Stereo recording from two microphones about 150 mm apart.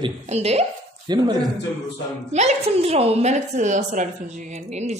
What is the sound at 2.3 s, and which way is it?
A woman's voice, 50° right (ahead or behind).